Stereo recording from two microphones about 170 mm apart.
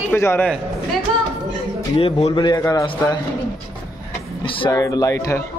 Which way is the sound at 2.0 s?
30° left (ahead or behind).